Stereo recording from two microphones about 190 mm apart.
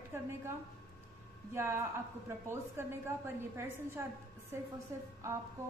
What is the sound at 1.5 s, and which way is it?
A woman's voice, 15° right (ahead or behind).